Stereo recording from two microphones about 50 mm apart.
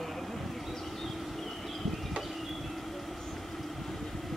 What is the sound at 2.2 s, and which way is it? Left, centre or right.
Train, centre.